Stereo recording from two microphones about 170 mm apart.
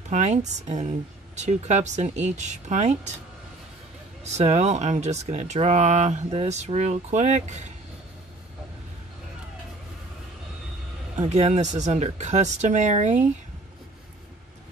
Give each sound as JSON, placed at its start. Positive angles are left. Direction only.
{"t": 0.1, "sound": "speech", "side_deg": -45}
{"t": 4.2, "sound": "speech", "side_deg": -40}
{"t": 11.1, "sound": "speech", "side_deg": -40}